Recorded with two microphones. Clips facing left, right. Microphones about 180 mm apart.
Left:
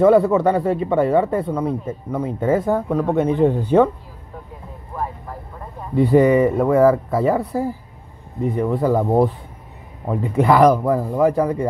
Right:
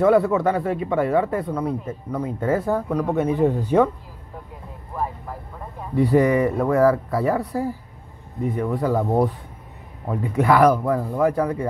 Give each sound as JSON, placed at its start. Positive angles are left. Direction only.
{"t": 0.0, "sound": "speech", "side_deg": 25}
{"t": 5.9, "sound": "speech", "side_deg": 20}
{"t": 10.0, "sound": "speech", "side_deg": 20}
{"t": 10.7, "sound": "speech", "side_deg": 15}